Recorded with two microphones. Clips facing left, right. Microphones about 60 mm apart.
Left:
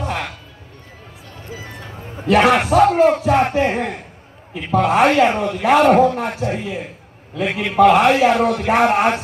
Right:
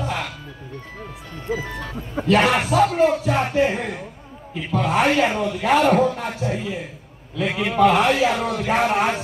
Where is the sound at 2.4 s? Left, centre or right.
Left.